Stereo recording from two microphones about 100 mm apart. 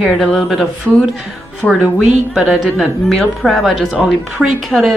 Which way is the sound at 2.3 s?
5° right (ahead or behind).